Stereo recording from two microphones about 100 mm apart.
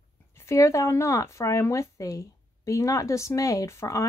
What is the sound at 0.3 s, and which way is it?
Speech, 25° left (ahead or behind).